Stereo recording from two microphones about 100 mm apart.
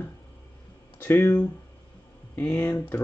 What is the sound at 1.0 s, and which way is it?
Speech, 25° left (ahead or behind).